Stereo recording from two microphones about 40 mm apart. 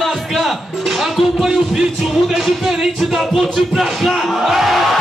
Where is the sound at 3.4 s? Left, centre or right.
Centre.